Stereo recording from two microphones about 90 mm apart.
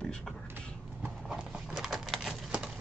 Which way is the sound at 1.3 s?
5° right (ahead or behind).